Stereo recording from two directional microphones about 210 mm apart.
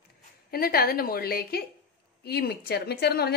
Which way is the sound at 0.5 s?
45° left (ahead or behind).